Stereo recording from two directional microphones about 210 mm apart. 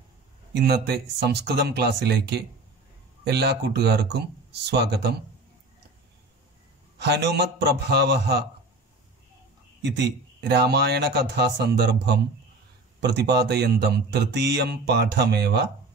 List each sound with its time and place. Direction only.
0.6 s speech: 50° right (ahead or behind)
7.0 s speech: 55° right (ahead or behind)
10.5 s speech: 50° right (ahead or behind)